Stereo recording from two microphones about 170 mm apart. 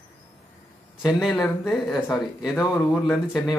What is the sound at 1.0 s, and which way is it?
Speech, centre (ahead or behind).